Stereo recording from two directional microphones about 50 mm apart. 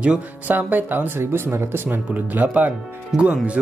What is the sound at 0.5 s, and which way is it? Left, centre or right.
Speech, right.